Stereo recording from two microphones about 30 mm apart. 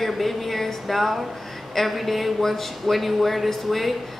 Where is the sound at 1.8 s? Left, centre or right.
Centre.